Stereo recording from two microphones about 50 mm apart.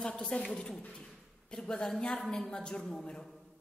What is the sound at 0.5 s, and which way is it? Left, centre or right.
A man's voice, centre.